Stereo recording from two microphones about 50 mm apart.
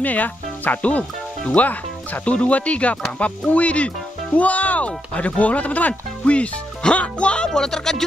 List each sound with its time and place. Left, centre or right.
0.0 s speech: left; by 8.0 s centre